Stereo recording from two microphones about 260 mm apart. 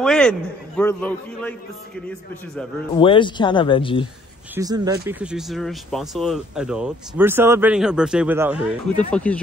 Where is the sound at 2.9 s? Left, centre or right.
Centre.